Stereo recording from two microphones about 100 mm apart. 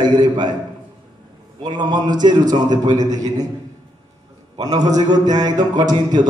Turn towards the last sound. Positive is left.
turn(degrees=-45)  # may be behind; listen again after turning